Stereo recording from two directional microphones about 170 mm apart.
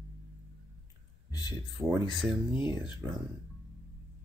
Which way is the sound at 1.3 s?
25° left (ahead or behind).